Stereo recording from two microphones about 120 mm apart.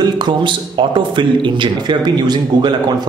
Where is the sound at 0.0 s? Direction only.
40° right (ahead or behind).